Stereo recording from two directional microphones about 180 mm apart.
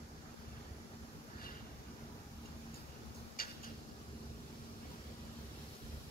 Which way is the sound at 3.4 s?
55° left (ahead or behind).